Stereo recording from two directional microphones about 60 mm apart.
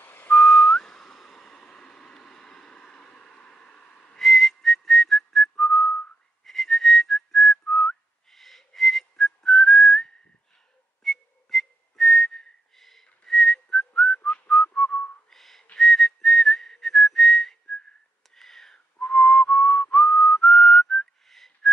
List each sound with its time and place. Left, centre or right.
0.0 s whistling: left
0.3 s whistling: centre
4.3 s whistling: centre